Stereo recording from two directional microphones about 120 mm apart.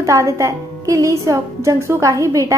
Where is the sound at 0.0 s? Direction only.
25° right (ahead or behind).